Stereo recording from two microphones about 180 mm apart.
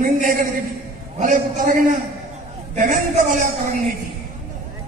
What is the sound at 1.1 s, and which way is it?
A man's voice, 45° right (ahead or behind).